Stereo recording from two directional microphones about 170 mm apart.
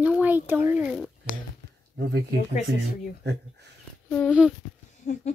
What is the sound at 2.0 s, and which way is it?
Speech, 90° right.